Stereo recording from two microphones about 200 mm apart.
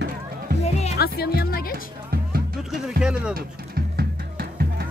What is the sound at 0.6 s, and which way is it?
Music, 30° left (ahead or behind).